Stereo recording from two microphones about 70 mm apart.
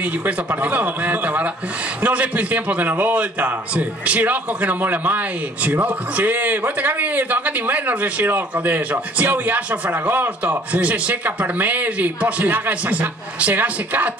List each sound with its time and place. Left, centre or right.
0.0 s a man's voice: right